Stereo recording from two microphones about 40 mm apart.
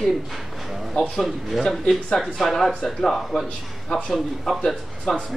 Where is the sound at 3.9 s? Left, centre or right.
Centre.